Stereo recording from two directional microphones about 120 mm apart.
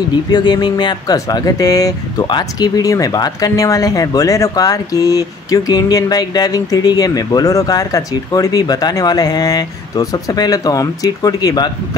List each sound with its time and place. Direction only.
0.3 s speech: 35° left (ahead or behind)